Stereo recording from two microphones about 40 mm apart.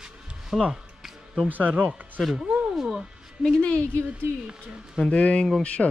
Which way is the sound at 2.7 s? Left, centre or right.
Centre.